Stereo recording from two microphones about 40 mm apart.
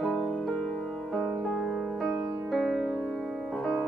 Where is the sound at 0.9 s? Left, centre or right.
Centre.